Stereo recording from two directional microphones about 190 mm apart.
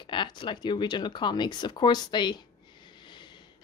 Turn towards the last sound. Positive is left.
turn(degrees=25)  # may be behind; listen again after turning